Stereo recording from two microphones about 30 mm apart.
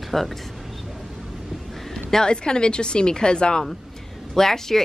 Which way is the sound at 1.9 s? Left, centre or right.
Left.